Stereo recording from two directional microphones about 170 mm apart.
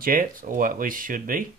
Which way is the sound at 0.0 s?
55° right (ahead or behind).